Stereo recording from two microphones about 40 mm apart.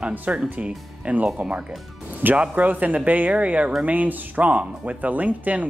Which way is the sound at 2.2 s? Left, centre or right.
Right.